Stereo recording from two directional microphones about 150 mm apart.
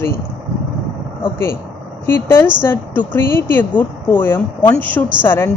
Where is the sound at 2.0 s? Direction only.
15° left (ahead or behind).